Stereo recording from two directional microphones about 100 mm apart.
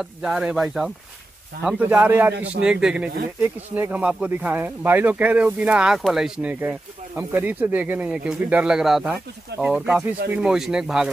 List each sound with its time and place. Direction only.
0.0 s speech: 5° right (ahead or behind)
1.8 s a man's voice: 20° right (ahead or behind)
2.6 s speech: 10° right (ahead or behind)
6.6 s speech: 20° right (ahead or behind)